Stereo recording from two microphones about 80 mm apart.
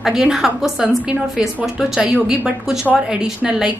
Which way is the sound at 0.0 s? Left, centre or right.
Centre.